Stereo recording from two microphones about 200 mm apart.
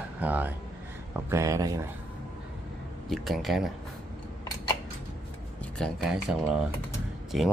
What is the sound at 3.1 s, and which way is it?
Speech, centre (ahead or behind).